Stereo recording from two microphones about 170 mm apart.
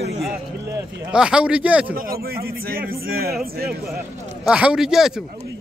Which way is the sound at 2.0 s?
60° right (ahead or behind).